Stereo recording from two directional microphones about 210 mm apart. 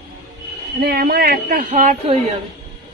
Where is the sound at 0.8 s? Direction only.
45° right (ahead or behind).